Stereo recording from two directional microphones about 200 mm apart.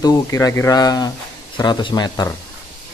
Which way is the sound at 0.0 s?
15° left (ahead or behind).